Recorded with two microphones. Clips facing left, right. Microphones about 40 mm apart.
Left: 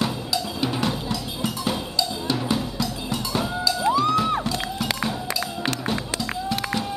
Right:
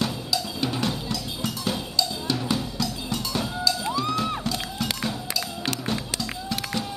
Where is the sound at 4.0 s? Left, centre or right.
Centre.